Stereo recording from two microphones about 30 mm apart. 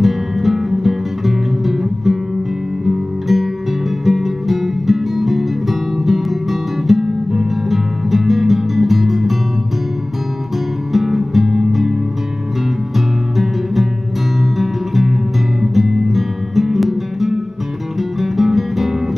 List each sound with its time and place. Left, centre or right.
0.0 s music: centre
10.9 s music: centre
14.6 s music: centre